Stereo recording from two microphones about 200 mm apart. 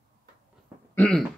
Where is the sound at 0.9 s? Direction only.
5° left (ahead or behind).